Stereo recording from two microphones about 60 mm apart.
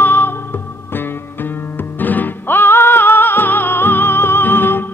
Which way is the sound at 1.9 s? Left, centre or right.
Left.